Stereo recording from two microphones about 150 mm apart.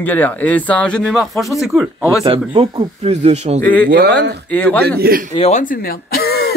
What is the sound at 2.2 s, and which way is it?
A man's voice, 35° right (ahead or behind).